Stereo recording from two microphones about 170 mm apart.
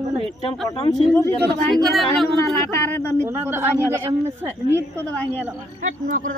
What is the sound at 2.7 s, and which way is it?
Speech, 10° left (ahead or behind).